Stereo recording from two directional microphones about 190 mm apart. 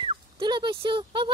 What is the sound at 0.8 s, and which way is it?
Speech, 25° right (ahead or behind).